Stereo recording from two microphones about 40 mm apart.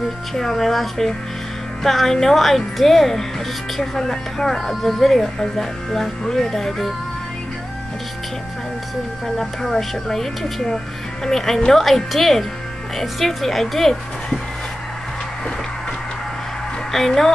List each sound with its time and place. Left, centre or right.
0.0 s speech: centre
9.4 s speech: centre
16.9 s speech: centre